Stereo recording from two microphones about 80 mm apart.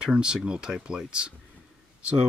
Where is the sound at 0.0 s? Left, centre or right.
Centre.